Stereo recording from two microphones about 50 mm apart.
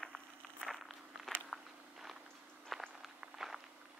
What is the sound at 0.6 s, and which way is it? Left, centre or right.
Walk, centre.